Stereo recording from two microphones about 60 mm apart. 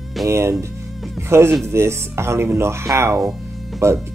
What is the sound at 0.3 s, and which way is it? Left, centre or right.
Speech, right.